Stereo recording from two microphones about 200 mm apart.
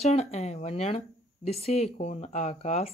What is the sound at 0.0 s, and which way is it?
Speech, 30° left (ahead or behind).